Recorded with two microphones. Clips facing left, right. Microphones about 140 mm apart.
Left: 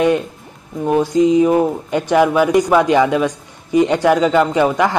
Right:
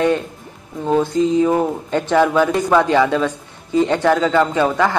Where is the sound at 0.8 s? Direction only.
15° left (ahead or behind).